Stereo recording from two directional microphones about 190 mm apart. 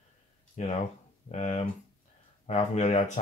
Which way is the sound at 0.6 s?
35° left (ahead or behind).